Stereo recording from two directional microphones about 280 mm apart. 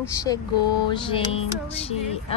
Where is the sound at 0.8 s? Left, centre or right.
Centre.